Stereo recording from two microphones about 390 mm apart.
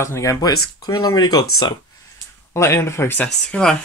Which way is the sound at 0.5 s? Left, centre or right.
Left.